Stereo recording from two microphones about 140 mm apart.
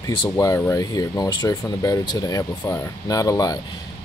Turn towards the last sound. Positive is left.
turn(degrees=25)  # may be behind; listen again after turning